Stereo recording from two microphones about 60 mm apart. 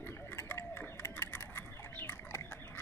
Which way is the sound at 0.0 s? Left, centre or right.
Left.